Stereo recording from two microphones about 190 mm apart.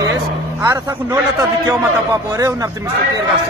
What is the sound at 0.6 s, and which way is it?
A man's voice, 15° right (ahead or behind).